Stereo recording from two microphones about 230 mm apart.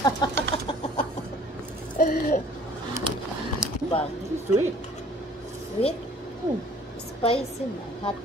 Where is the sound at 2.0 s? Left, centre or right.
Left.